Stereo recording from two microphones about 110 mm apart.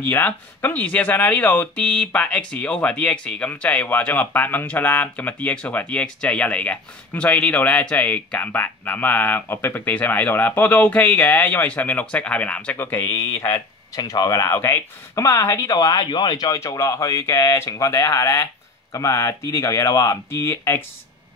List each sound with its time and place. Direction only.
0.0 s speech: 15° left (ahead or behind)